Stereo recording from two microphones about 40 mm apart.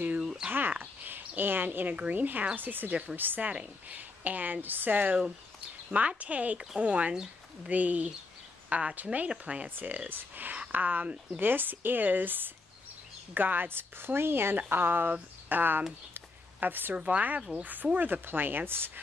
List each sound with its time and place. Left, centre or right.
0.2 s a sound: centre
0.5 s a woman's voice: right
5.9 s speech: right
9.8 s a woman's voice: right
14.7 s speech: right
16.1 s a sound: right
16.9 s speech: right
17.4 s speech: right
17.9 s speech: right